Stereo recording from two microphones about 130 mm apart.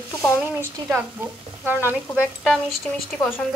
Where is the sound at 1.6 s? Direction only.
15° right (ahead or behind).